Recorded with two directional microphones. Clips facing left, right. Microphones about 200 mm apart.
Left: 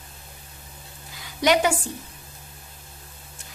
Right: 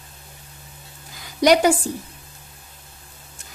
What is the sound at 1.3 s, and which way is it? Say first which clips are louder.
Speech: right 5 dB; 40° right (ahead or behind).